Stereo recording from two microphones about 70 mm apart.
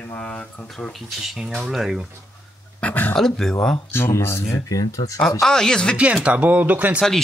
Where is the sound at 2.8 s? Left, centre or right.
Left.